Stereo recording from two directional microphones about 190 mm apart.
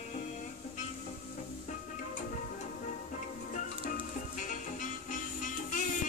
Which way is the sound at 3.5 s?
40° left (ahead or behind).